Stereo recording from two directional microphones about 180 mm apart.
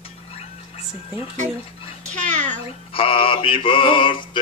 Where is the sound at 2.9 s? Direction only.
30° left (ahead or behind).